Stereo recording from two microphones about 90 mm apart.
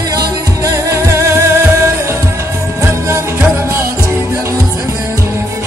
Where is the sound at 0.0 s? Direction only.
45° right (ahead or behind).